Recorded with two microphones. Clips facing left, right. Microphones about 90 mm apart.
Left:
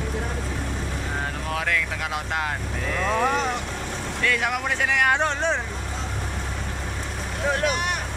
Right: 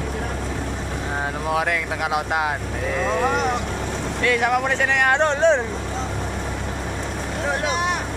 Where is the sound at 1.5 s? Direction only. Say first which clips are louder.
Right 4 dB; 15° right (ahead or behind); by 5.6 s centre (ahead or behind).